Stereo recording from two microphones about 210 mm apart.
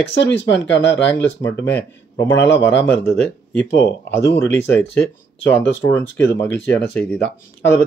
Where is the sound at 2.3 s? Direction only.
60° left (ahead or behind).